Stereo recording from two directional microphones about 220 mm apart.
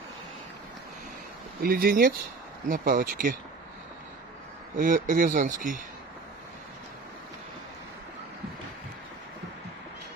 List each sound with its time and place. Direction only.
1.6 s speech: 45° right (ahead or behind)
4.7 s speech: 40° right (ahead or behind)